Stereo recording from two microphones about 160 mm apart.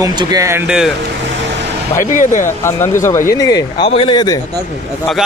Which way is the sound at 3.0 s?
20° left (ahead or behind).